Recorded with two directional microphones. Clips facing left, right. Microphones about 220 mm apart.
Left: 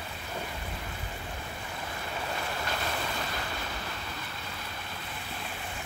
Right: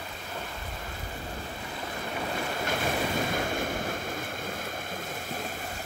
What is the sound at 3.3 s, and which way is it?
Waves, 50° right (ahead or behind).